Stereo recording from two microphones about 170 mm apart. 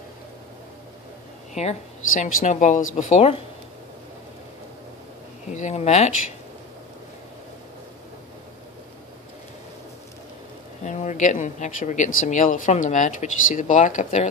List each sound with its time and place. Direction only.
1.5 s speech: 40° left (ahead or behind)
5.5 s speech: 45° left (ahead or behind)
10.8 s speech: 45° left (ahead or behind)